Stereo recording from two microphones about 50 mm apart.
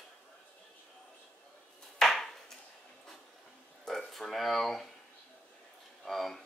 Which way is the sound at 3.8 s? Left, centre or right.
Centre.